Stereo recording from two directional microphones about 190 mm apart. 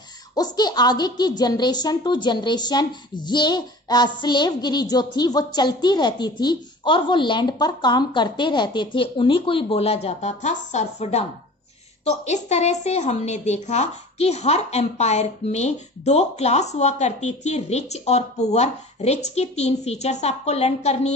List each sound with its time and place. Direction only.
0.4 s a woman's voice: 20° left (ahead or behind)